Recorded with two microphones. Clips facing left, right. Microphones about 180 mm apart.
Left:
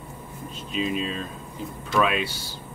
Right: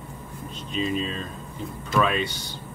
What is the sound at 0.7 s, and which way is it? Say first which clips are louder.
Speech: even; 5° left (ahead or behind).